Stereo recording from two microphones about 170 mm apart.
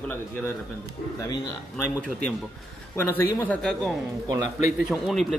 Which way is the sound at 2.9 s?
15° left (ahead or behind).